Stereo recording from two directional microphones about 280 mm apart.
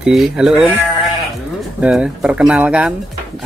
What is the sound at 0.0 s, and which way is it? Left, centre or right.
Speech, centre.